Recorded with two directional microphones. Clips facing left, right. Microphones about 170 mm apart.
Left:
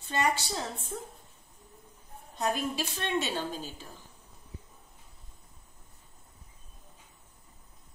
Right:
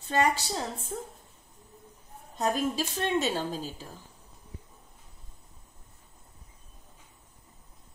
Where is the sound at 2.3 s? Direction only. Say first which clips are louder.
Right 3 dB; 40° right (ahead or behind).